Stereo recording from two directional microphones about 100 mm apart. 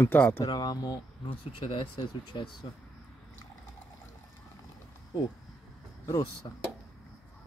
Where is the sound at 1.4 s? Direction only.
60° left (ahead or behind).